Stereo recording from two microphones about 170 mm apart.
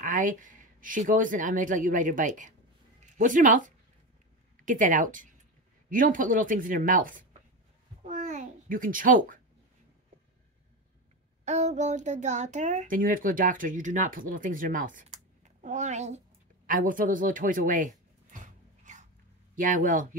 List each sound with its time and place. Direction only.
0.0 s a child's voice: 50° right (ahead or behind)
8.1 s babbling: 45° right (ahead or behind)
11.4 s a child's voice: 45° right (ahead or behind)
16.6 s a sound: 50° right (ahead or behind)
19.5 s a child's voice: 50° right (ahead or behind)